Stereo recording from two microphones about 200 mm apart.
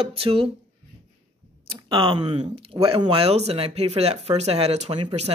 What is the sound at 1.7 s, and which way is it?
Speech, 25° right (ahead or behind).